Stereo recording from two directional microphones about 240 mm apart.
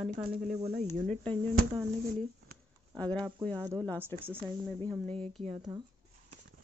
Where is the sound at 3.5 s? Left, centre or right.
Centre.